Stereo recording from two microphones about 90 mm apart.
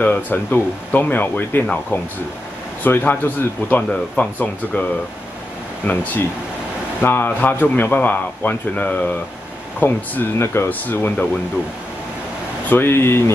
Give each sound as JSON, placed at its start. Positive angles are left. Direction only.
{"t": 0.0, "sound": "a man's voice", "side_deg": 20}
{"t": 2.8, "sound": "speech", "side_deg": 20}
{"t": 5.9, "sound": "a man's voice", "side_deg": 20}
{"t": 12.6, "sound": "a man's voice", "side_deg": 25}